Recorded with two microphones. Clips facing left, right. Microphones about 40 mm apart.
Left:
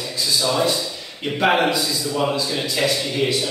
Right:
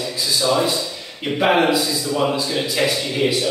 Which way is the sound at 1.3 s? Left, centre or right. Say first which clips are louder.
Right 2 dB; centre.